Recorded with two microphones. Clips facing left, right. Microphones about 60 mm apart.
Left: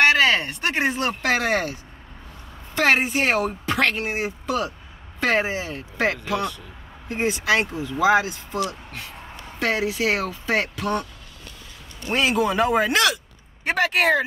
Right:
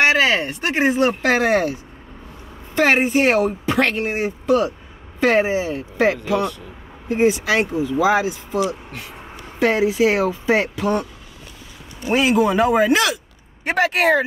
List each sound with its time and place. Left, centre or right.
0.0 s speech: centre